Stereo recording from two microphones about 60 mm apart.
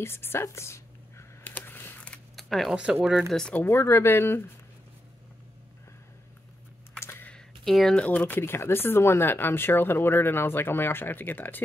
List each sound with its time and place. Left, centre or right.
0.0 s speech: left
1.4 s computer keyboard: left
2.3 s a sound: centre
2.7 s speech: centre
3.3 s speech: centre
3.6 s speech: left
7.0 s computer keyboard: left
7.6 s speech: centre
7.9 s speech: left
8.4 s speech: left